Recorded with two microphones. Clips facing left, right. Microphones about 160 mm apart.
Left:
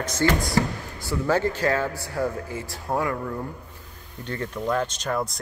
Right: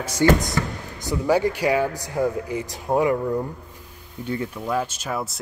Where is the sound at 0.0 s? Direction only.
10° right (ahead or behind).